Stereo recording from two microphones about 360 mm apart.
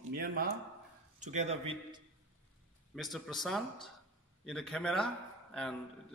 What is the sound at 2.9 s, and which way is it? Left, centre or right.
Speech, centre.